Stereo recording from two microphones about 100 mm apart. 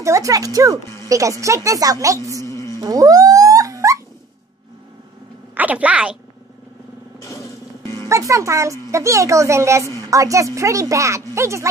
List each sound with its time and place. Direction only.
0.0 s speech: 30° right (ahead or behind)
2.4 s a sound: 30° left (ahead or behind)
2.8 s dog: 40° right (ahead or behind)
5.5 s a woman's voice: 15° right (ahead or behind)
7.2 s a sound: 30° left (ahead or behind)
8.1 s a woman's voice: 30° right (ahead or behind)